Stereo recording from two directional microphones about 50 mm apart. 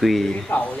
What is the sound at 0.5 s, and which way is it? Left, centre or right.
Speech, left.